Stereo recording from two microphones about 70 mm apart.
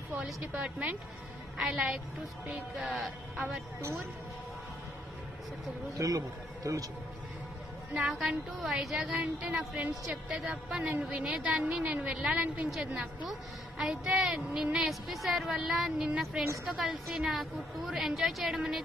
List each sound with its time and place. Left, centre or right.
0.1 s a woman's voice: right
2.8 s a woman's voice: centre
5.9 s a man's voice: right
8.1 s a woman's voice: centre